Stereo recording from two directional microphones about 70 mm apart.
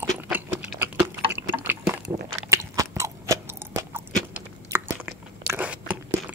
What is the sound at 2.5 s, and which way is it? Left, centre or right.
Biting, right.